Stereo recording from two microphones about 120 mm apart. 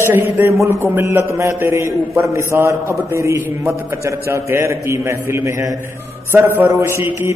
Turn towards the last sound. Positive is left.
turn(degrees=-25)  # may be behind; listen again after turning